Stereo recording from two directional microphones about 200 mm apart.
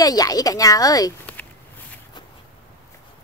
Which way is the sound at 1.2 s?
5° left (ahead or behind).